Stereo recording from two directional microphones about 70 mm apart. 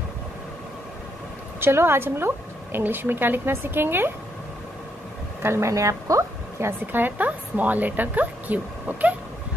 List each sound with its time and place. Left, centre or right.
1.6 s a woman's voice: right
5.4 s a woman's voice: right
6.6 s a woman's voice: right